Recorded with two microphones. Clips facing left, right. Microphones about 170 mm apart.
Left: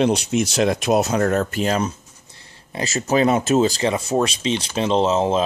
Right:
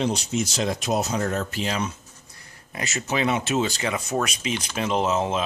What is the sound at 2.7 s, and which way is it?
Speech, 35° left (ahead or behind).